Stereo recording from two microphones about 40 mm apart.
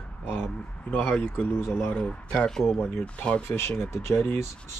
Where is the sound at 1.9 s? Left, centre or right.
Left.